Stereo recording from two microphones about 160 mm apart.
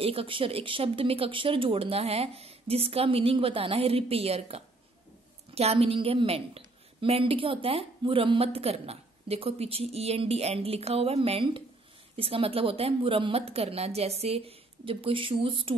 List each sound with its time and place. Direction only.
0.0 s speech: 35° right (ahead or behind)